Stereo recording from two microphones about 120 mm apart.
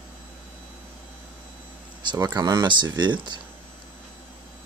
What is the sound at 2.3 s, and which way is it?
Speech, 35° right (ahead or behind).